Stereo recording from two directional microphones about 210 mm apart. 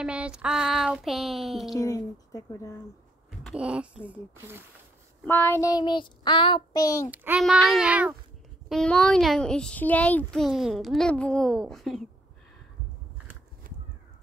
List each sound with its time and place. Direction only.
0.0 s a child's voice: 5° right (ahead or behind)
1.8 s child singing: 15° left (ahead or behind)
3.3 s a child's voice: 5° right (ahead or behind)
5.2 s child singing: 10° left (ahead or behind)
7.1 s a child's voice: 5° right (ahead or behind)
8.6 s a child's voice: 5° left (ahead or behind)
13.7 s crow: 40° right (ahead or behind)